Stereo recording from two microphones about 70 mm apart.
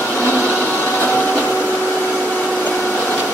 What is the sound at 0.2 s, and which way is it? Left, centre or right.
Blender, left.